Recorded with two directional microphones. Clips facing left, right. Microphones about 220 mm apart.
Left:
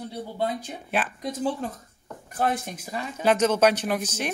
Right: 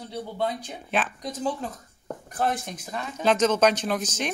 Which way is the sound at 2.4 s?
10° left (ahead or behind).